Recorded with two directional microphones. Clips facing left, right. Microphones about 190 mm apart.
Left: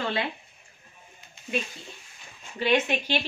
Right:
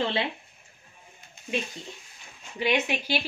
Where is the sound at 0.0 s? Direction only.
25° right (ahead or behind).